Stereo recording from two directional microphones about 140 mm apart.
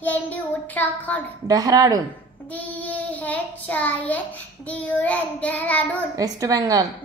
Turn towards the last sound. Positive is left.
turn(degrees=-25)  # may be behind; listen again after turning